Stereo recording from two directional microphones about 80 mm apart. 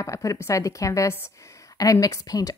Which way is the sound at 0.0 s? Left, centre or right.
Left.